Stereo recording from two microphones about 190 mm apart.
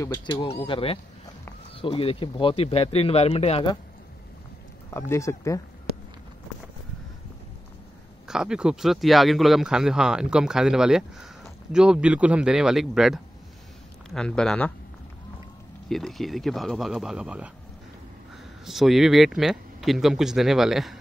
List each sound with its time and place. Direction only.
0.0 s speech: 20° left (ahead or behind)
4.9 s speech: 15° left (ahead or behind)
8.3 s speech: 5° right (ahead or behind)
15.9 s speech: centre (ahead or behind)
18.7 s speech: centre (ahead or behind)